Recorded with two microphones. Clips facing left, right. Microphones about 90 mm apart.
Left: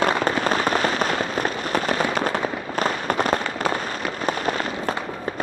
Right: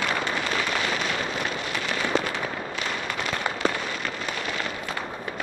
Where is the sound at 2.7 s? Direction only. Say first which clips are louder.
Left 8 dB; 40° left (ahead or behind).